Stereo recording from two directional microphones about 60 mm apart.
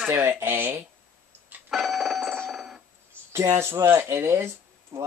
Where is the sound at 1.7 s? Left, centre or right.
Centre.